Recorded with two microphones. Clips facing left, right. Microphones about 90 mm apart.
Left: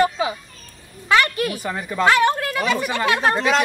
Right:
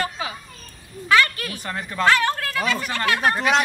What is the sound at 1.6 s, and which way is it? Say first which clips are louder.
Speech: even; 10° left (ahead or behind).